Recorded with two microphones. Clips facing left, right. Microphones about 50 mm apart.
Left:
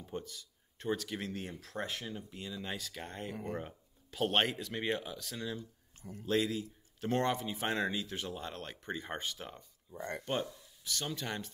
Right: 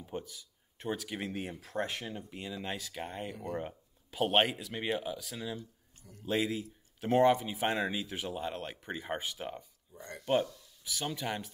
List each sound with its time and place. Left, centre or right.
0.0 s speech: centre
9.4 s speech: centre
9.9 s speech: left
10.8 s speech: centre